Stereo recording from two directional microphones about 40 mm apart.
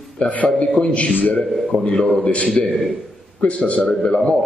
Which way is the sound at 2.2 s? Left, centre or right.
Left.